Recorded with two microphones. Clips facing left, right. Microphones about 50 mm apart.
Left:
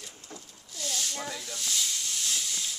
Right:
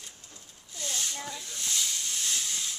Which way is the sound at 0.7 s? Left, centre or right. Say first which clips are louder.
Left 1 dB; right.